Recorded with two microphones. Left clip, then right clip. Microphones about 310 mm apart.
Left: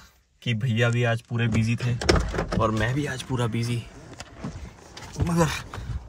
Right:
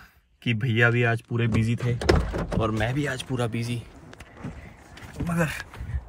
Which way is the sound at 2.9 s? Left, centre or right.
Centre.